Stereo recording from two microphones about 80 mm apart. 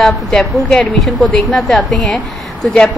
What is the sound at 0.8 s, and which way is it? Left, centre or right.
Speech, centre.